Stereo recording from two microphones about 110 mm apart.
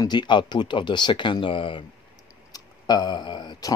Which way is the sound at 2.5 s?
40° left (ahead or behind).